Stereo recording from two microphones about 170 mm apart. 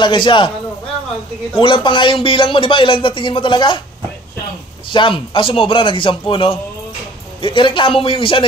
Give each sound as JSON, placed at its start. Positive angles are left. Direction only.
{"t": 0.0, "sound": "speech", "side_deg": 30}
{"t": 1.6, "sound": "speech", "side_deg": 30}
{"t": 4.8, "sound": "a man's voice", "side_deg": 30}